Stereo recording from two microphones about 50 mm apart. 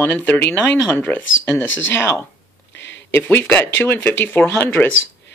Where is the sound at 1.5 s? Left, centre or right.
Left.